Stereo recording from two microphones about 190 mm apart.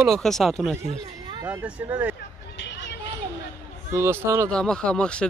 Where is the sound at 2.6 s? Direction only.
70° left (ahead or behind).